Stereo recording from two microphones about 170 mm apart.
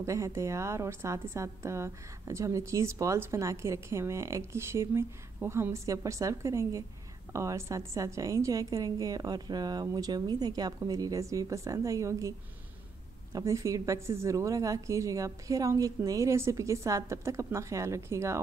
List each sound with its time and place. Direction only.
0.0 s a woman's voice: 15° right (ahead or behind)